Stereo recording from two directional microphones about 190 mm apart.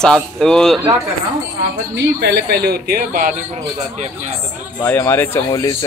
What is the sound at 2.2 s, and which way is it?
A man's voice, 60° right (ahead or behind).